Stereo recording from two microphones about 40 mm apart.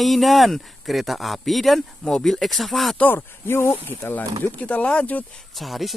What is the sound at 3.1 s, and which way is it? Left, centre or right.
Speech, left.